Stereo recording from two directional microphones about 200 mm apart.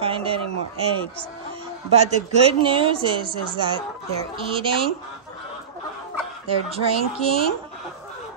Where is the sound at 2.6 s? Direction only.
25° right (ahead or behind).